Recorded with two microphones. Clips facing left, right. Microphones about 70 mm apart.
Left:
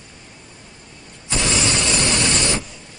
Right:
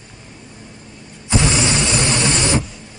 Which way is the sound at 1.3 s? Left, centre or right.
Right.